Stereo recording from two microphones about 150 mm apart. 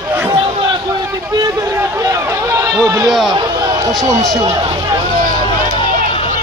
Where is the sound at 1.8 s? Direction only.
20° right (ahead or behind).